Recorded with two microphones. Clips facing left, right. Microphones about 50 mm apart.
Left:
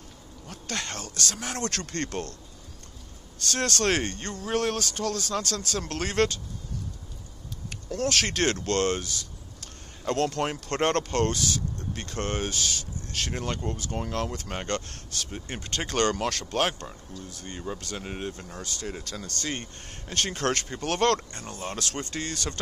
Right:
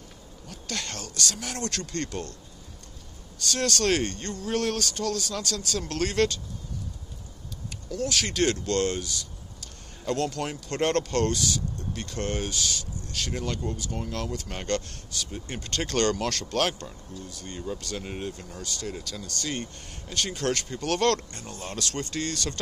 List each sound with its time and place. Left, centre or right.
0.5 s speech: left
3.4 s speech: left
8.1 s speech: left
15.3 s speech: left